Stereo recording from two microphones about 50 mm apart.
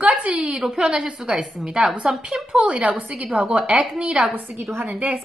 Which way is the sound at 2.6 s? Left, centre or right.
Right.